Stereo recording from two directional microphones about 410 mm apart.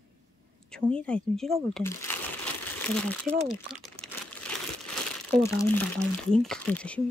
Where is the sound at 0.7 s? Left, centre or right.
Centre.